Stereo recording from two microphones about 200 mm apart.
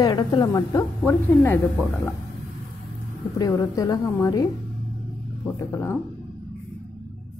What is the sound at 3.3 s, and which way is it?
A woman's voice, 20° left (ahead or behind).